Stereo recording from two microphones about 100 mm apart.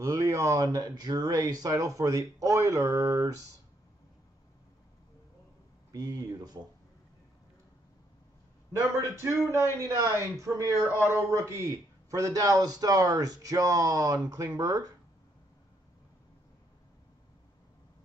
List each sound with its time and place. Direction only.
0.0 s speech: 30° right (ahead or behind)
5.9 s speech: 40° right (ahead or behind)
9.5 s speech: 30° right (ahead or behind)